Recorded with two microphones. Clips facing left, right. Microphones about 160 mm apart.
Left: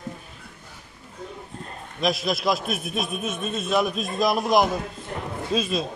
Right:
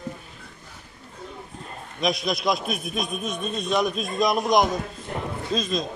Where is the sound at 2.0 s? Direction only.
Centre (ahead or behind).